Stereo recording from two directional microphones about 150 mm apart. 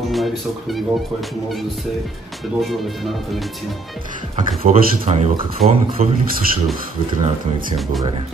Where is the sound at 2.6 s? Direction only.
Centre (ahead or behind).